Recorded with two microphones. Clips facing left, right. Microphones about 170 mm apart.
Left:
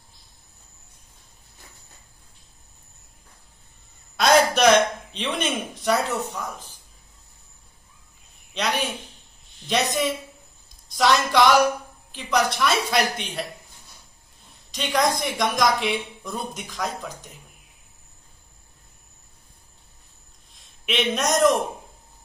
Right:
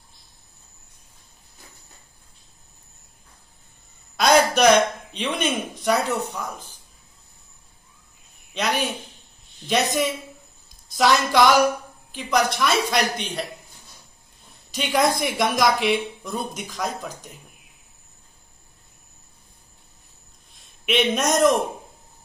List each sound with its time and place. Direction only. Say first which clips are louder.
4.2 s speech: right 1 dB; centre (ahead or behind)
8.5 s a woman's voice: right 1 dB; centre (ahead or behind)
11.0 s a woman's voice: right 1 dB; centre (ahead or behind)
14.7 s a woman's voice: right 2 dB; 5° right (ahead or behind)
20.8 s a woman's voice: right 3 dB; centre (ahead or behind)